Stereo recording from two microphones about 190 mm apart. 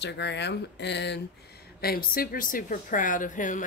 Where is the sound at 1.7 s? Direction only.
50° left (ahead or behind).